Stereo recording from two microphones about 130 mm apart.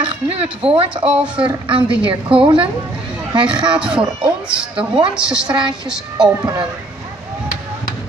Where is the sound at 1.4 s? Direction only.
40° right (ahead or behind).